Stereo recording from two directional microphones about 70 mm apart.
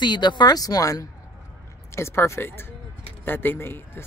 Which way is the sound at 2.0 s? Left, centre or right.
Left.